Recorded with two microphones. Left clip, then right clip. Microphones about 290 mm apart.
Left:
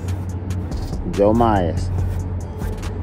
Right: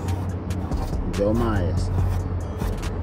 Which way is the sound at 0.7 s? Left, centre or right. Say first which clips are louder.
Left 4 dB; centre.